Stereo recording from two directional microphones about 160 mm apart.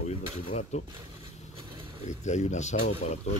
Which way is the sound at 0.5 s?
45° left (ahead or behind).